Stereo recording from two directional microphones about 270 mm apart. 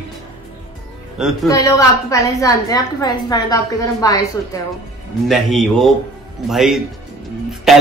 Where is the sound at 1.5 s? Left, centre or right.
Centre.